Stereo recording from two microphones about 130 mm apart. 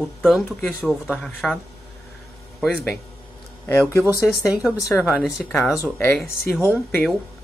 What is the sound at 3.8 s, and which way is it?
Speech, 25° left (ahead or behind).